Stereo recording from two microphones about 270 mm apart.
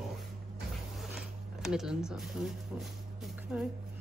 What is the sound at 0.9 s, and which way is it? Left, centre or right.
Zipper, centre.